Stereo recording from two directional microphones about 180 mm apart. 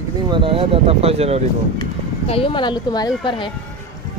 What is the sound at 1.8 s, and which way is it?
Speech, 30° left (ahead or behind).